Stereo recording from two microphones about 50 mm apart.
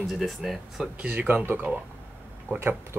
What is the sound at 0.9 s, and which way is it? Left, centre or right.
Speech, right.